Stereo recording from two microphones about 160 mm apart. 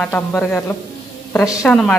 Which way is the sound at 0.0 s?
10° left (ahead or behind).